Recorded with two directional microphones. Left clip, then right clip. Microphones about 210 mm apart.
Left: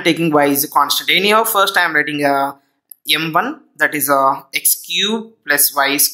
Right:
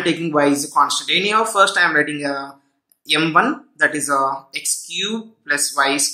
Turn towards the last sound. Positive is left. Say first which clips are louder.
# left 2 dB
turn(degrees=35)  # may be behind; listen again after turning